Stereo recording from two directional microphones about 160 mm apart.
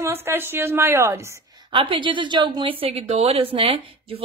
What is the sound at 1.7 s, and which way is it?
A woman's voice, 30° right (ahead or behind).